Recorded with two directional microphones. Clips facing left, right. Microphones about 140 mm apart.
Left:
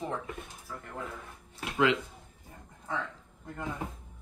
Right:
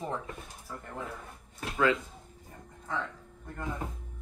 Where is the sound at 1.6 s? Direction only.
15° left (ahead or behind).